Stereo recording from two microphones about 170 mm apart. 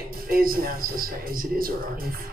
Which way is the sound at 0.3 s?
55° right (ahead or behind).